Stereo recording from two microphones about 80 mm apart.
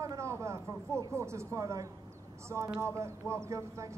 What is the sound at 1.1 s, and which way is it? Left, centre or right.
A woman's voice, right.